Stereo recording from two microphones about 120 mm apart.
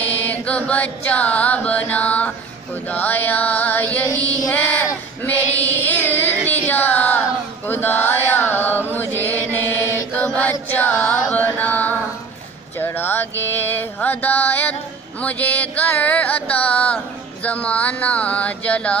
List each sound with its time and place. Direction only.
0.0 s chant: 15° left (ahead or behind)
2.9 s music: 15° left (ahead or behind)
5.2 s child singing: 15° left (ahead or behind)
8.4 s chant: 15° left (ahead or behind)
8.9 s mantra: 15° left (ahead or behind)
10.1 s chant: 10° left (ahead or behind)
12.7 s music: 20° left (ahead or behind)